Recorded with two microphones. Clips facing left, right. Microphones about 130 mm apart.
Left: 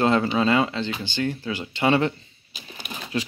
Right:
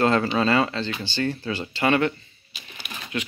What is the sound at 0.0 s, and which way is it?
Speech, 15° left (ahead or behind).